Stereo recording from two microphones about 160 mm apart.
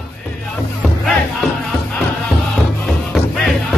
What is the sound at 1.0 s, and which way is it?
Music, centre (ahead or behind).